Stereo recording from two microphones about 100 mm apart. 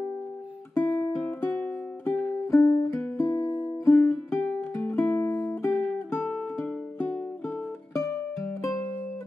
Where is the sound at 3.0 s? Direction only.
15° left (ahead or behind).